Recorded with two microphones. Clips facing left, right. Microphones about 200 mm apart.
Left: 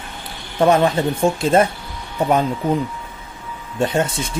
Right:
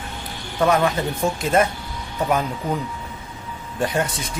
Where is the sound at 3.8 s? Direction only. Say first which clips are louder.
Left 4 dB; 25° left (ahead or behind).